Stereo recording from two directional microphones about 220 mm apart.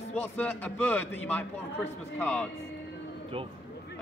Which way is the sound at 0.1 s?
5° left (ahead or behind).